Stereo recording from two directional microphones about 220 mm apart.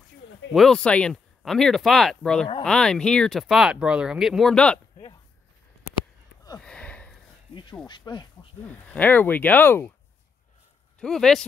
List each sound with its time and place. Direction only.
0.5 s speech: centre (ahead or behind)
5.9 s a sound: 20° left (ahead or behind)
6.6 s sniff: 5° left (ahead or behind)
7.8 s speech: 20° left (ahead or behind)
8.6 s speech: 5° left (ahead or behind)
11.0 s speech: centre (ahead or behind)